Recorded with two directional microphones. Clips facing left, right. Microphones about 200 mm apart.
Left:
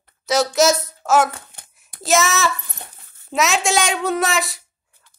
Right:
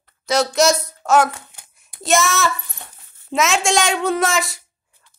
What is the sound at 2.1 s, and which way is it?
Speech, centre (ahead or behind).